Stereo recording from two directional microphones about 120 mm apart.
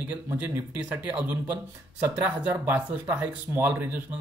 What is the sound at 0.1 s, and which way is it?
Speech, 15° right (ahead or behind).